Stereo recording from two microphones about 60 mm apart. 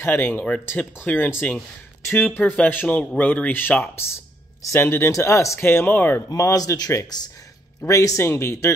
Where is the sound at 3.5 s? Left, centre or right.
Left.